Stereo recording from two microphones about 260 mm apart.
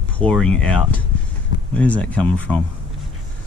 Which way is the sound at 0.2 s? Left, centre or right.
Centre.